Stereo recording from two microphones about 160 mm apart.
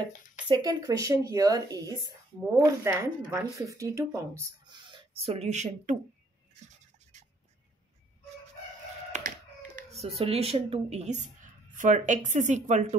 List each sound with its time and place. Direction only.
0.0 s speech: 25° right (ahead or behind)
4.7 s a sound: 30° right (ahead or behind)
5.2 s speech: 40° right (ahead or behind)
6.6 s scratch: 45° right (ahead or behind)
9.1 s a sound: 50° right (ahead or behind)
9.8 s a woman's voice: 40° right (ahead or behind)